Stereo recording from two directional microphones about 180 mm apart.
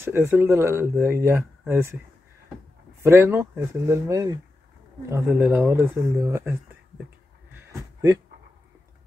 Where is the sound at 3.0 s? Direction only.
15° right (ahead or behind).